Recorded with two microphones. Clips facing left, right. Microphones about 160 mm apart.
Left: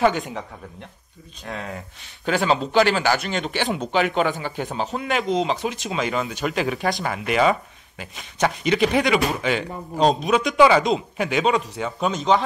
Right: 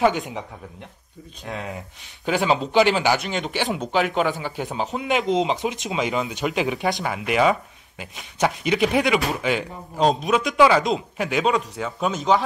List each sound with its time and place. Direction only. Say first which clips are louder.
1.4 s speech: even; 20° right (ahead or behind)
3.3 s a man's voice: left 1 dB; 5° right (ahead or behind)